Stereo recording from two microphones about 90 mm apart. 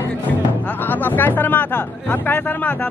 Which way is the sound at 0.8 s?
20° left (ahead or behind).